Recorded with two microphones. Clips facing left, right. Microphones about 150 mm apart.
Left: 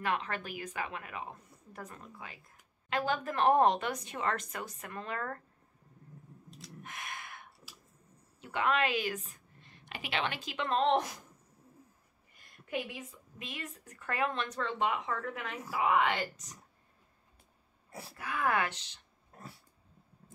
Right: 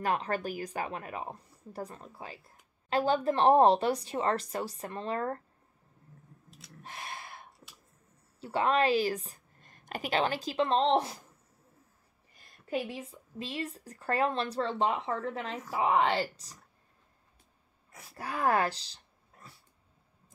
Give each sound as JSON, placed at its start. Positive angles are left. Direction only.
{"t": 0.0, "sound": "a woman's voice", "side_deg": -40}
{"t": 6.8, "sound": "a sound", "side_deg": -30}
{"t": 8.4, "sound": "a woman's voice", "side_deg": -35}
{"t": 12.6, "sound": "a woman's voice", "side_deg": -35}
{"t": 18.1, "sound": "a woman's voice", "side_deg": -35}